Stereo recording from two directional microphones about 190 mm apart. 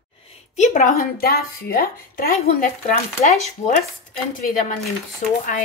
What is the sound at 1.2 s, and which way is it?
A woman's voice, 55° left (ahead or behind).